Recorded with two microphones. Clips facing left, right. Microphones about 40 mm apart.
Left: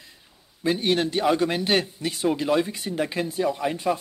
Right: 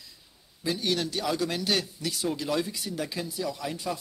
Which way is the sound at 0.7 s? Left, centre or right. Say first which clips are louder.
Left 6 dB; left.